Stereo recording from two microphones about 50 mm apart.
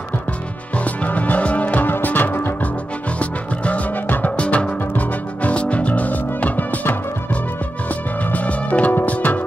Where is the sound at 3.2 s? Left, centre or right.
Left.